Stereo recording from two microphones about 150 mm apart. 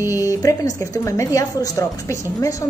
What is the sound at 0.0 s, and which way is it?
Speech, 20° left (ahead or behind).